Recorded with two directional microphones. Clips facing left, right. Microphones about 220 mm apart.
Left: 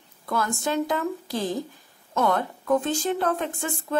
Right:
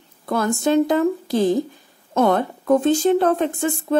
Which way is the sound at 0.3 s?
25° right (ahead or behind).